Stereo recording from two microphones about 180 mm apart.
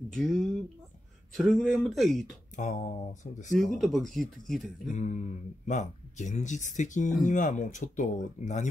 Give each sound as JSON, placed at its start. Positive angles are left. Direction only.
{"t": 0.1, "sound": "speech", "side_deg": 0}
{"t": 2.5, "sound": "speech", "side_deg": 45}
{"t": 3.5, "sound": "speech", "side_deg": 0}
{"t": 4.9, "sound": "speech", "side_deg": 40}